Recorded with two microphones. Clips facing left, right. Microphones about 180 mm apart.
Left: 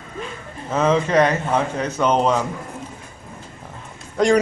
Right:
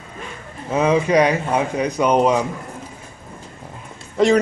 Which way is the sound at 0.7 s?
10° right (ahead or behind).